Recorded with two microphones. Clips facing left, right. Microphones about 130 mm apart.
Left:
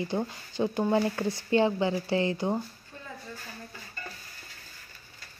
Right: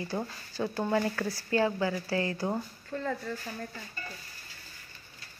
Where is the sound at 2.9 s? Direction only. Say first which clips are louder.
Right 11 dB; 70° right (ahead or behind).